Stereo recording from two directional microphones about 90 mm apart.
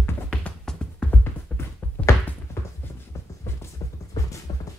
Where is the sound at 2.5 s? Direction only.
30° left (ahead or behind).